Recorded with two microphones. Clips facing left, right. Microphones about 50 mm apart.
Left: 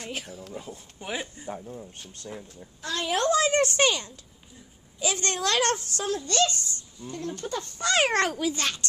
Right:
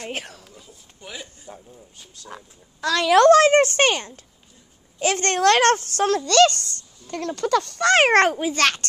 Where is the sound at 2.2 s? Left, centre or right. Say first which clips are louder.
Even; right.